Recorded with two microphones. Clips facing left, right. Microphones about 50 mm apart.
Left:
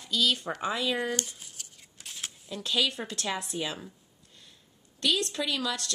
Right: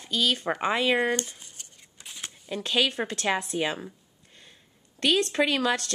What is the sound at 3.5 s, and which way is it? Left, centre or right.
Speech, right.